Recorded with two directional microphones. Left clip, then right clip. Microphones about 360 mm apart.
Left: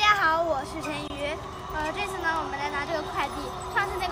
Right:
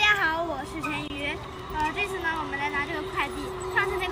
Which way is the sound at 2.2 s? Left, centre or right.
Centre.